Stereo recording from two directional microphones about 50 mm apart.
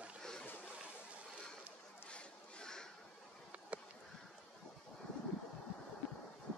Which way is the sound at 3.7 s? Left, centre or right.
Right.